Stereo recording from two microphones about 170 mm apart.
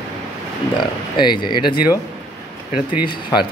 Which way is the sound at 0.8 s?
25° left (ahead or behind).